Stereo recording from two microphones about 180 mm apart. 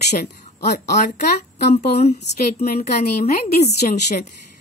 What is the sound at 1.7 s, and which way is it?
Speech, 40° left (ahead or behind).